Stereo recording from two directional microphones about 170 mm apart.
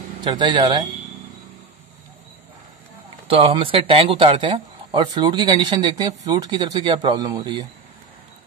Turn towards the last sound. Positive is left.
turn(degrees=-25)  # may be behind; listen again after turning